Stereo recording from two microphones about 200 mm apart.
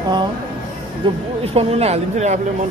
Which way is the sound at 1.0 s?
25° right (ahead or behind).